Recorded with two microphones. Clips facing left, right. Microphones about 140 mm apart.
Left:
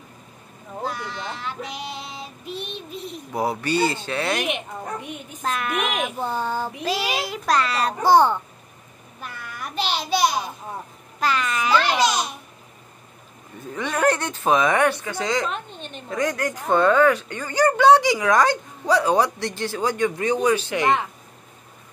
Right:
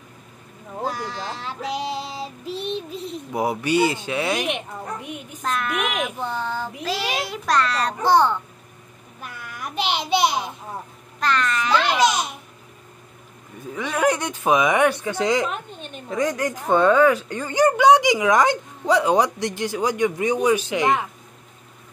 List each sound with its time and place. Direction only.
0.8 s child singing: 35° right (ahead or behind)
3.3 s speech: 15° right (ahead or behind)
5.4 s a woman's voice: 5° left (ahead or behind)
9.2 s child singing: 10° right (ahead or behind)
11.1 s a child's voice: 5° left (ahead or behind)
13.7 s speech: 5° right (ahead or behind)
17.3 s speech: 25° right (ahead or behind)